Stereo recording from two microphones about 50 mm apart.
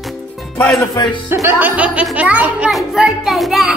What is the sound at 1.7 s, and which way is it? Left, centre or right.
Speech, right.